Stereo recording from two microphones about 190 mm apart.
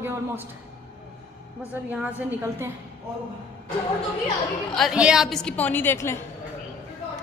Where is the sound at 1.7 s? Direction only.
10° right (ahead or behind).